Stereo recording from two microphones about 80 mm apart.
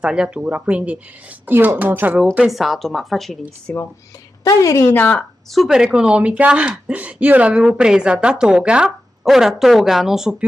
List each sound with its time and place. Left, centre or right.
0.0 s a woman's voice: centre
2.4 s a woman's voice: centre
3.7 s a woman's voice: centre
4.5 s a woman's voice: left
4.9 s a woman's voice: left
5.5 s a woman's voice: centre
5.9 s a woman's voice: centre